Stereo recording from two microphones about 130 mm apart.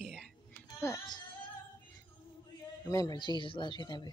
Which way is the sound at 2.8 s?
25° left (ahead or behind).